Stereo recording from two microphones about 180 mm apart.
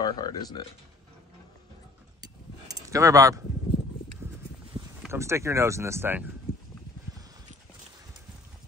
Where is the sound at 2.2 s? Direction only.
20° right (ahead or behind).